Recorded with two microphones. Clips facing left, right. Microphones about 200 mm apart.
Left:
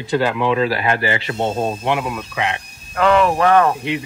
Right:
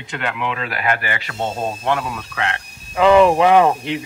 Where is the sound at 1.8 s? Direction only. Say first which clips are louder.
Left 1 dB; 15° left (ahead or behind).